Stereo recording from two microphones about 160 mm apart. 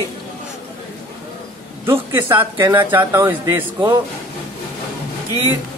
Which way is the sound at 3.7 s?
25° right (ahead or behind).